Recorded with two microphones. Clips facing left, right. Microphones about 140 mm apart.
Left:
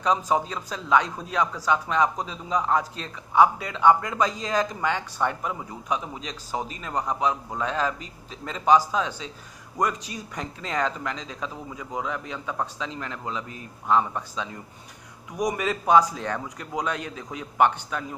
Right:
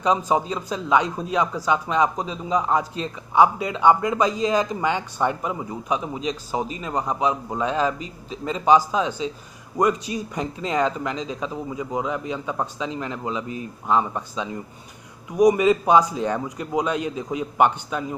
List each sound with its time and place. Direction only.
0.0 s a man's voice: 5° right (ahead or behind)
10.3 s speech: 10° right (ahead or behind)
15.5 s speech: 10° right (ahead or behind)